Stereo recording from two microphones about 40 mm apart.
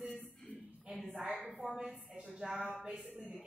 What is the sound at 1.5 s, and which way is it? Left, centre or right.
Speech, centre.